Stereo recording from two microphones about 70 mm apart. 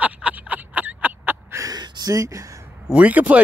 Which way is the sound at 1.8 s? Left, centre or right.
Right.